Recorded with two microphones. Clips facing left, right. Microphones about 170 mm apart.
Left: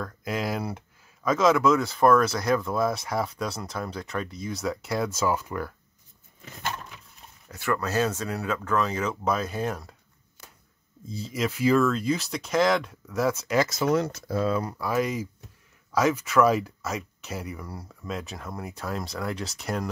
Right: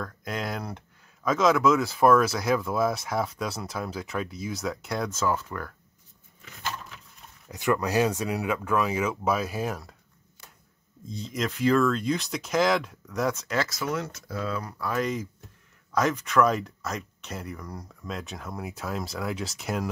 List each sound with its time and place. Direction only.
0.0 s speech: 5° left (ahead or behind)
7.4 s speech: 15° right (ahead or behind)
11.1 s speech: 5° left (ahead or behind)
13.7 s speech: 30° left (ahead or behind)
14.8 s speech: 10° left (ahead or behind)